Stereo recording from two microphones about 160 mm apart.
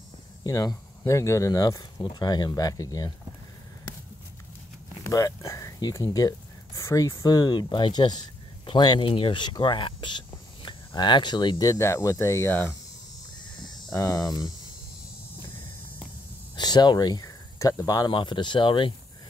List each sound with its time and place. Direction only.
0.4 s speech: 25° left (ahead or behind)
5.0 s speech: 20° left (ahead or behind)
13.6 s cricket: 25° left (ahead or behind)
13.9 s speech: 20° left (ahead or behind)
16.5 s speech: 25° left (ahead or behind)